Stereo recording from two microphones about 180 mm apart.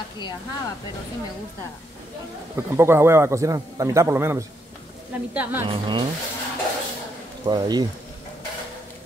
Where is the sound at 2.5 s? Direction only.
15° right (ahead or behind).